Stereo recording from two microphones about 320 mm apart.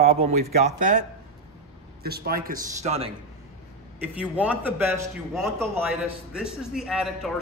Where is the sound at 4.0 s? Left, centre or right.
Centre.